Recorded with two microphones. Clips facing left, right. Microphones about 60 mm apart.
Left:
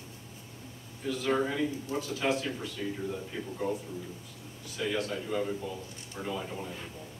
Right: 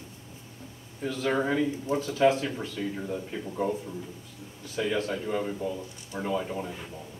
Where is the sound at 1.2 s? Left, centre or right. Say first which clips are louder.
Right 3 dB; centre.